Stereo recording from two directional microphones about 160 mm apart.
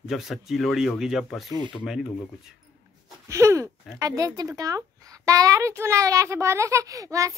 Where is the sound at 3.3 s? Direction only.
20° right (ahead or behind).